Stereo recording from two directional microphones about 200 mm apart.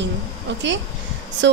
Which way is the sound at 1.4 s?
65° right (ahead or behind).